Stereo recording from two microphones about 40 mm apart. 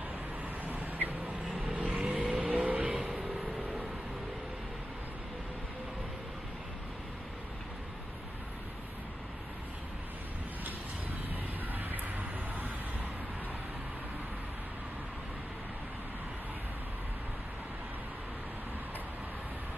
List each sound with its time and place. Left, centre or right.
1.7 s vehicle: right
11.7 s vehicle: right